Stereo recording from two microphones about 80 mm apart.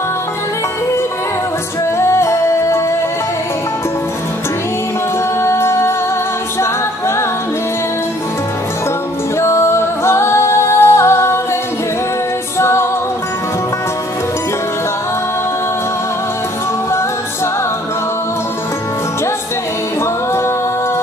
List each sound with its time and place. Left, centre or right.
2.0 s music: left
5.4 s music: left
9.4 s music: left
12.5 s music: left